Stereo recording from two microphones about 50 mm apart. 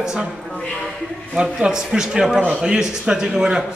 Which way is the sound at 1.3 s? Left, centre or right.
Centre.